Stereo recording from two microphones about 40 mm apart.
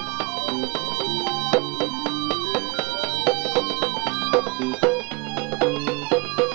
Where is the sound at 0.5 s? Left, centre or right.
Centre.